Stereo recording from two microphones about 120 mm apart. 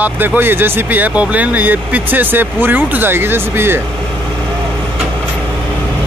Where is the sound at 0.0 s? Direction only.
15° right (ahead or behind).